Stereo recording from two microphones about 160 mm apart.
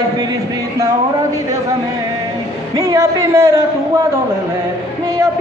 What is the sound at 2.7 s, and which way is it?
Speech, 20° right (ahead or behind).